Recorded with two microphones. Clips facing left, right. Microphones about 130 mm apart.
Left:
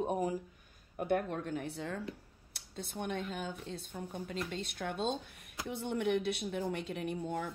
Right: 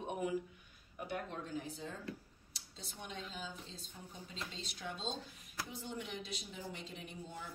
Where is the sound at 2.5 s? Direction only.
60° left (ahead or behind).